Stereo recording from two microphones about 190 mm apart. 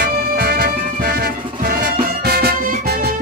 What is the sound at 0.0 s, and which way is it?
Music, 50° right (ahead or behind).